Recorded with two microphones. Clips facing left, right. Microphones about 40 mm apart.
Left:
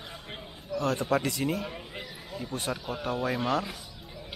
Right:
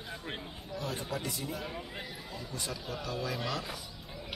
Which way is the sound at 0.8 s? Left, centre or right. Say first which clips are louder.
Left 10 dB; left.